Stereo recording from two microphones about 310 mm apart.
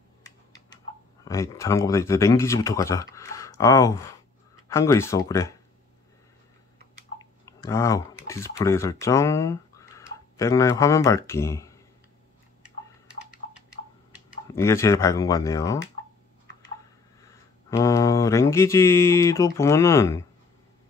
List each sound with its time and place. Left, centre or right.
1.2 s speech: centre
7.2 s speech: centre
14.5 s speech: centre
17.6 s speech: centre